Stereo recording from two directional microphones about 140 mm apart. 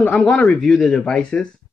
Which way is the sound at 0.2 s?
Centre (ahead or behind).